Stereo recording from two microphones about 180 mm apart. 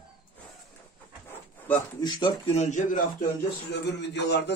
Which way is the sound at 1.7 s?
20° left (ahead or behind).